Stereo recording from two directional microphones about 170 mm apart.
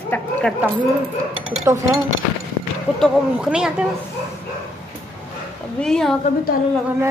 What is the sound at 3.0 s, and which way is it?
Speech, 5° right (ahead or behind).